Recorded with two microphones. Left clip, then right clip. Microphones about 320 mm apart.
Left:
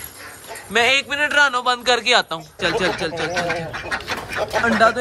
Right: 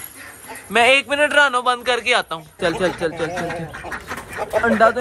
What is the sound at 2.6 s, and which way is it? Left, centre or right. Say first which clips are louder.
Speech: even; centre.